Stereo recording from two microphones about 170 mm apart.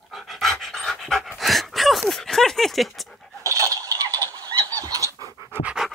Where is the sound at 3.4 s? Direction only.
20° right (ahead or behind).